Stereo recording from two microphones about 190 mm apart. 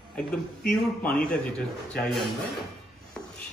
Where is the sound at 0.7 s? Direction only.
5° left (ahead or behind).